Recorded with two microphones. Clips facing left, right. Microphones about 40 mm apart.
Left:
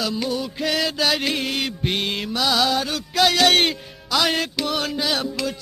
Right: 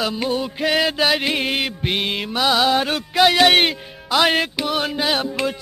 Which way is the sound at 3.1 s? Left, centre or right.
Centre.